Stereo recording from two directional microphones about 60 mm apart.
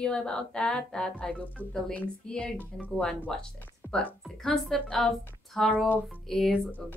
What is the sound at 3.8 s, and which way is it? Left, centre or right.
Music, left.